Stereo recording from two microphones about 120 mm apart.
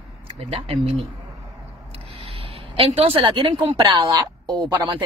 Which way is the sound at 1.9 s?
50° right (ahead or behind).